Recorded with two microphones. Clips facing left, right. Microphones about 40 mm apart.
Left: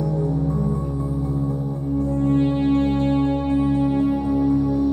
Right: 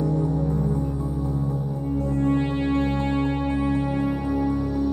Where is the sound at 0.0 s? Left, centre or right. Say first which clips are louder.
Left 1 dB; right.